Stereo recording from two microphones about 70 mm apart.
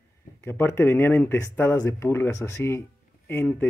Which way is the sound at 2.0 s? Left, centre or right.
Left.